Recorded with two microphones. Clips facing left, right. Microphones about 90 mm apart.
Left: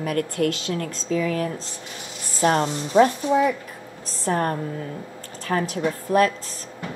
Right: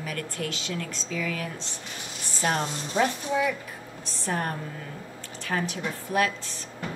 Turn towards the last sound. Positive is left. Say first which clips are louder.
# left 7 dB
turn(degrees=40)  # may be behind; listen again after turning